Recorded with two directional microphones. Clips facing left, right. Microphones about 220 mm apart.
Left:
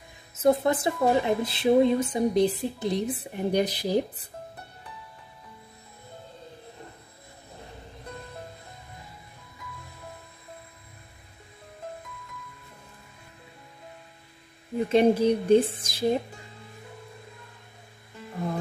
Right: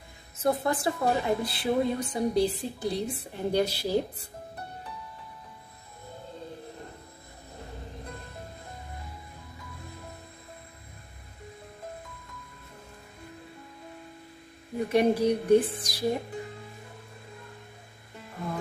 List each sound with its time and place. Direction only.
0.4 s a woman's voice: 20° left (ahead or behind)
14.9 s speech: 25° left (ahead or behind)